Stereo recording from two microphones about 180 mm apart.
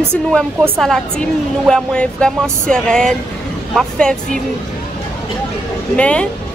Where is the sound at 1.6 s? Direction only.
5° left (ahead or behind).